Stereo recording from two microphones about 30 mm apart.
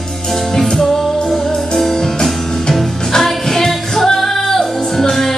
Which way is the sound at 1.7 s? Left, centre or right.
Centre.